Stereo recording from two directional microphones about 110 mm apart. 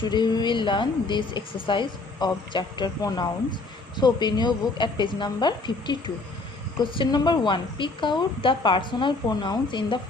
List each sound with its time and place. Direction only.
0.0 s a woman's voice: 40° left (ahead or behind)